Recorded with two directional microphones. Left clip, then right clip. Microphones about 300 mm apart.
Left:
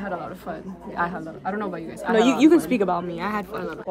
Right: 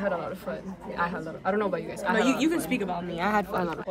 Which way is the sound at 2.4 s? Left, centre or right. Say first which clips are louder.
Left 9 dB; centre.